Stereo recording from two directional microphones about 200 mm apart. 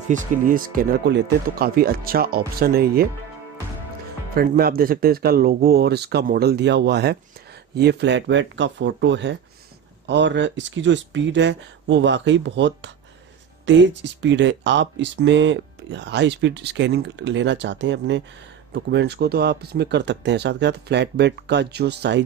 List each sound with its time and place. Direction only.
0.1 s speech: 40° right (ahead or behind)
4.4 s speech: 50° right (ahead or behind)